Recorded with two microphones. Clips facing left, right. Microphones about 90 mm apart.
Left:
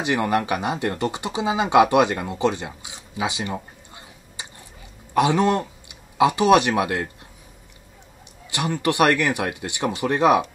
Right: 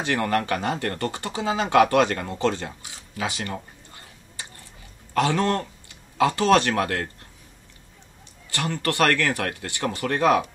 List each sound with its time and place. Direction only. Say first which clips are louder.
0.0 s speech: left 2 dB; 15° left (ahead or behind)
8.5 s speech: left 3 dB; 15° left (ahead or behind)